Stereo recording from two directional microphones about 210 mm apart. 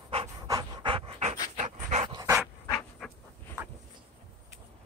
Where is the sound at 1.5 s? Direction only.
30° right (ahead or behind).